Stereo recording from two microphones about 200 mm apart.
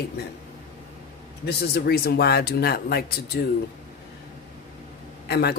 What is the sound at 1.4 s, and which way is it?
Speech, 50° left (ahead or behind).